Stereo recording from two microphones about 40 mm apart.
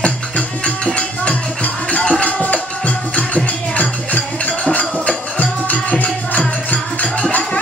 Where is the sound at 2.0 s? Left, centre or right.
Centre.